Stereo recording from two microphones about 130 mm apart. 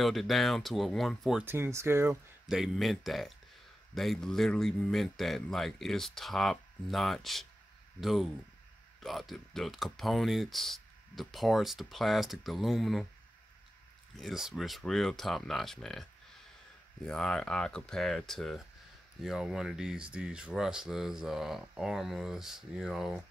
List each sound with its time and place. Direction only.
0.0 s speech: centre (ahead or behind)
1.4 s speech: 20° right (ahead or behind)
2.4 s speech: centre (ahead or behind)
14.1 s speech: centre (ahead or behind)
17.1 s speech: 5° left (ahead or behind)